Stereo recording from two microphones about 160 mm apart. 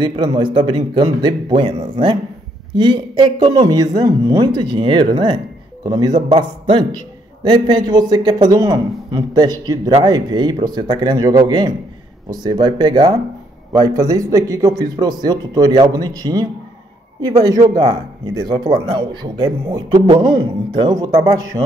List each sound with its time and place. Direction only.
0.2 s speech: 30° right (ahead or behind)